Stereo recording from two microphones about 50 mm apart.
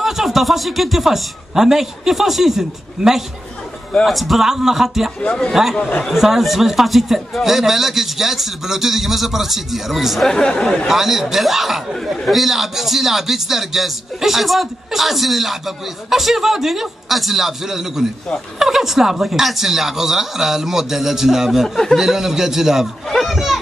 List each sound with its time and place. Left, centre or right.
0.0 s a man's voice: centre
10.2 s speech: centre
10.9 s speech: centre
21.6 s speech: centre
21.9 s a man's voice: centre